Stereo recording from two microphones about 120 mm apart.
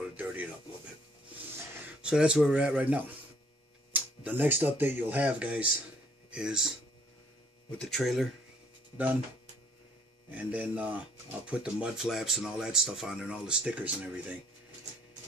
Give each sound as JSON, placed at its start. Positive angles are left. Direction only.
{"t": 0.0, "sound": "a sound", "side_deg": -10}
{"t": 2.0, "sound": "speech", "side_deg": -5}
{"t": 7.7, "sound": "speech", "side_deg": 5}
{"t": 10.3, "sound": "speech", "side_deg": -10}